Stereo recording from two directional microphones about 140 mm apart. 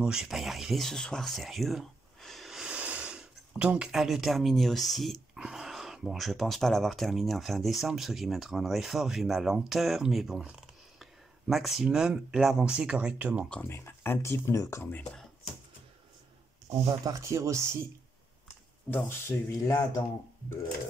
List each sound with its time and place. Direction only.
0.0 s speech: 5° right (ahead or behind)
13.5 s speech: 15° left (ahead or behind)
17.0 s speech: 20° right (ahead or behind)
18.9 s speech: 15° left (ahead or behind)